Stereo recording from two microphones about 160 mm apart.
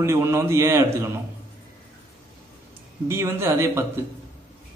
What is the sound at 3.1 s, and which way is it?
Speech, 15° right (ahead or behind).